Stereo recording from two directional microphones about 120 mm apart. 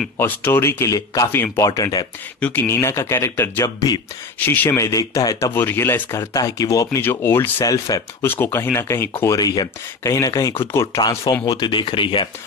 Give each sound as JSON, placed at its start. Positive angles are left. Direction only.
{"t": 0.2, "sound": "speech", "side_deg": 20}
{"t": 2.4, "sound": "speech", "side_deg": 20}
{"t": 5.5, "sound": "speech", "side_deg": 20}
{"t": 7.0, "sound": "speech", "side_deg": 20}
{"t": 7.6, "sound": "speech", "side_deg": 30}